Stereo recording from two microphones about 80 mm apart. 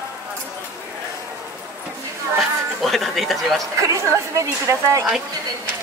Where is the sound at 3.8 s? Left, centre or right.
Right.